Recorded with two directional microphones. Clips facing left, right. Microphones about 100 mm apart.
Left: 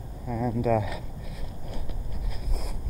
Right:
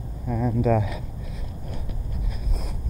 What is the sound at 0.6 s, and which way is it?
Speech, 45° right (ahead or behind).